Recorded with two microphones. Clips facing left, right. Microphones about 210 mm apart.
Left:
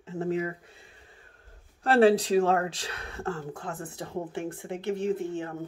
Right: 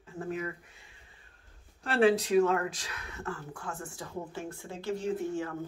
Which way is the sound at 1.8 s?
35° left (ahead or behind).